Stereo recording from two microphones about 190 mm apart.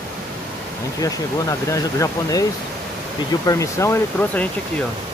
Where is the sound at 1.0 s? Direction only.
15° left (ahead or behind).